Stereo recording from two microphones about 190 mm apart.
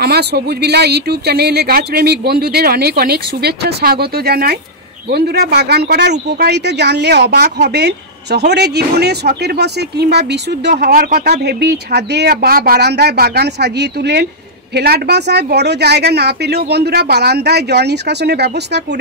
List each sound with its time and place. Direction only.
0.0 s speech: 60° right (ahead or behind)